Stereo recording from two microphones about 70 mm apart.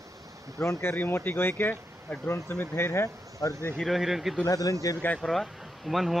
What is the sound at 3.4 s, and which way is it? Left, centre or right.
Speech, left.